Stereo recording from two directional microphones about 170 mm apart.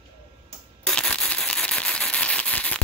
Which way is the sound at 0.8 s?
5° left (ahead or behind).